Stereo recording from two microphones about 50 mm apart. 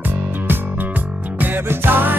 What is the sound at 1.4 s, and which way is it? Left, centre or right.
Music, right.